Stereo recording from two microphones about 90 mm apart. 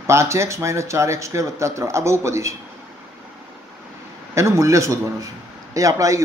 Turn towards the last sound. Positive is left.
turn(degrees=-35)  # may be behind; listen again after turning